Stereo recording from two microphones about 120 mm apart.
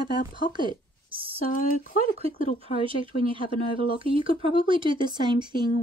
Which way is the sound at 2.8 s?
45° right (ahead or behind).